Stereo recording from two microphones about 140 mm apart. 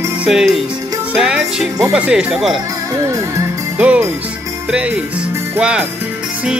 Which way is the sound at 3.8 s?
10° right (ahead or behind).